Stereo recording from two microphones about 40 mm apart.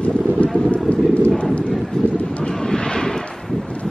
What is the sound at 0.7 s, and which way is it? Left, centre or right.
Boat, left.